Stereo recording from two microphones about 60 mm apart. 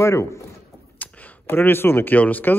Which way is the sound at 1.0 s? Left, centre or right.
Left.